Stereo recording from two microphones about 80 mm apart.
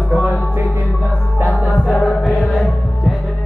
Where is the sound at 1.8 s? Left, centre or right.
Centre.